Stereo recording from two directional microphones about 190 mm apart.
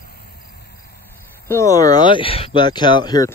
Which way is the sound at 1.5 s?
15° left (ahead or behind).